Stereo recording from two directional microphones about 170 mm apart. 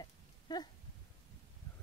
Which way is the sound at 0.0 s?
25° left (ahead or behind).